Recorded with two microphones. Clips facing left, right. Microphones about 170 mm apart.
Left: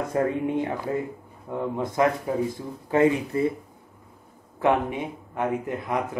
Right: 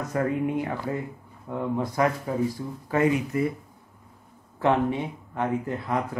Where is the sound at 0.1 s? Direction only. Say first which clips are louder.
Even; 25° left (ahead or behind).